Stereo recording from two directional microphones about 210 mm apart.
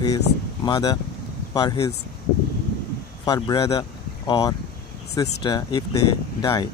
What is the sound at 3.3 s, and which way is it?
Speech, 20° left (ahead or behind).